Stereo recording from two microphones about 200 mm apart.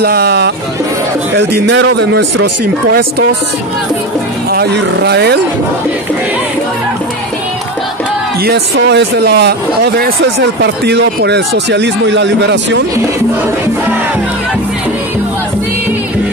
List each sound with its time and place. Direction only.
0.0 s a man's voice: 50° right (ahead or behind)
2.9 s speech: 50° right (ahead or behind)
4.5 s a man's voice: 55° right (ahead or behind)
8.5 s a man's voice: 55° right (ahead or behind)